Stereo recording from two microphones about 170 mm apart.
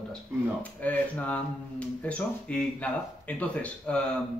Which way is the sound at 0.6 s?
10° left (ahead or behind).